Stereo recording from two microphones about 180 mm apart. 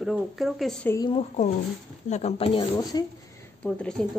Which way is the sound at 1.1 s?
40° left (ahead or behind).